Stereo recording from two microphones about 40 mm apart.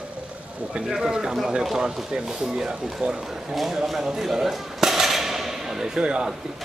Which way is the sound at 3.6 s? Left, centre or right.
Centre.